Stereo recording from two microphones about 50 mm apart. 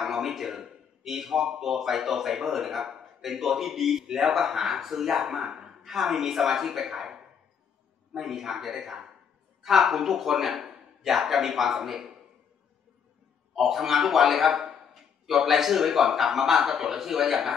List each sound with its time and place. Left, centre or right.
0.0 s a man's voice: centre
13.6 s a man's voice: centre